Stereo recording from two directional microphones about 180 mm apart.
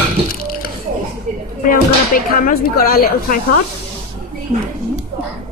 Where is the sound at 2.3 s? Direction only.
55° left (ahead or behind).